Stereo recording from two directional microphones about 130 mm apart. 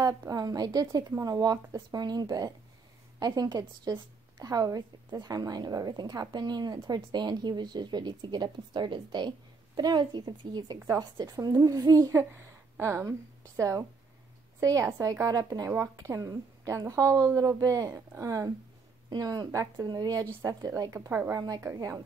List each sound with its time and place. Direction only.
0.0 s a woman's voice: 25° right (ahead or behind)